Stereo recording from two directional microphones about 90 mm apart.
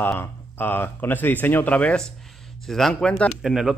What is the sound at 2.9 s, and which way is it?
Speech, 15° left (ahead or behind).